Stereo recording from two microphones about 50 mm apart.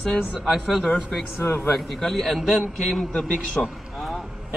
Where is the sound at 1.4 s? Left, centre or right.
Left.